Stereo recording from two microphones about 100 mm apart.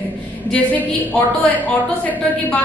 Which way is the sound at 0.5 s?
15° left (ahead or behind).